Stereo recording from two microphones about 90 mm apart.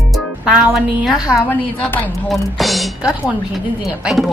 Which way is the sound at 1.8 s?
20° left (ahead or behind).